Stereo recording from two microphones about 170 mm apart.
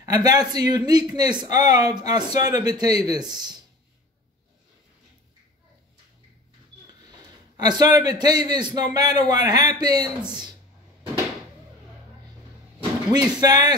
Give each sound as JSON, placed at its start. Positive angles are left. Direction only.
{"t": 0.0, "sound": "a man's voice", "side_deg": -20}
{"t": 6.9, "sound": "a man's voice", "side_deg": -25}
{"t": 13.1, "sound": "a man's voice", "side_deg": -25}